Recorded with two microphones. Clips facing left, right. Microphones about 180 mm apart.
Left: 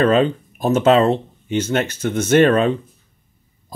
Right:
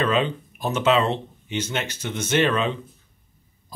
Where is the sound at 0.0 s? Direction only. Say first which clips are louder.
Left 7 dB; 45° left (ahead or behind).